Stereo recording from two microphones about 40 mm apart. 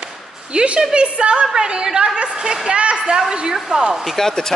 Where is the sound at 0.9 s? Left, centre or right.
Right.